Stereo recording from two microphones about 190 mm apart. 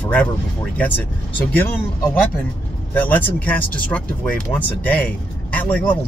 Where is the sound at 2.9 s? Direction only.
10° left (ahead or behind).